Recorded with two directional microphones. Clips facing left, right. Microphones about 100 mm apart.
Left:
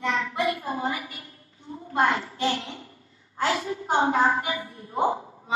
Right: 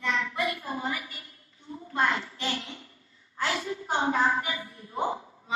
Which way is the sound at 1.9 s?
35° left (ahead or behind).